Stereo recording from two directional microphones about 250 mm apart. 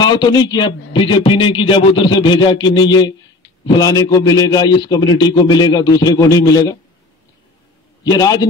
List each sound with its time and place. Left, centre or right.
0.0 s a man's voice: centre
8.0 s a man's voice: centre